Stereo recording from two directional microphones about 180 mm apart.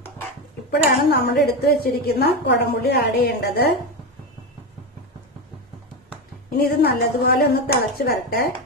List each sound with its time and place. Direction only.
0.7 s a woman's voice: 65° left (ahead or behind)
6.5 s a woman's voice: 60° left (ahead or behind)